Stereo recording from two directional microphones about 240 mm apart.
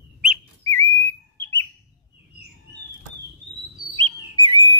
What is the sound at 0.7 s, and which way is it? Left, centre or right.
Bird, centre.